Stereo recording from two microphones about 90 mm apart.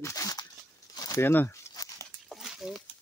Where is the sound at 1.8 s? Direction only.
40° left (ahead or behind).